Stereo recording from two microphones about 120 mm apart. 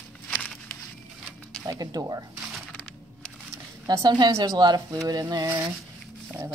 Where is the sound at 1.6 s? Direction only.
30° right (ahead or behind).